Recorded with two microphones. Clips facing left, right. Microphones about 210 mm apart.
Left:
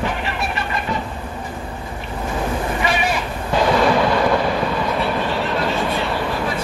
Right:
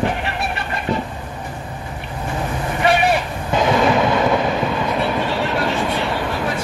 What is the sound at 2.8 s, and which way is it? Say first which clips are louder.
Boat: right 8 dB; 60° right (ahead or behind).